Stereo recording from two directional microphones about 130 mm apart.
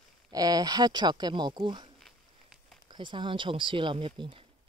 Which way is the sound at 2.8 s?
35° right (ahead or behind).